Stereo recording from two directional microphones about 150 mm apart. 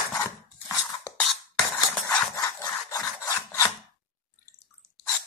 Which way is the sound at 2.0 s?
15° left (ahead or behind).